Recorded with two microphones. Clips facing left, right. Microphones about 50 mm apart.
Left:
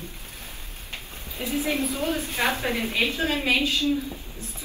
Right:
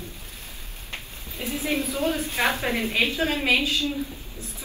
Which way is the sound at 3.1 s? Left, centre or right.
Right.